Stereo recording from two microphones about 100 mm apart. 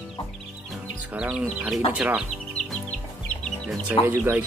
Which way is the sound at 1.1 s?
10° right (ahead or behind).